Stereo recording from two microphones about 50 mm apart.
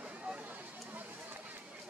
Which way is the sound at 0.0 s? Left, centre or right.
Right.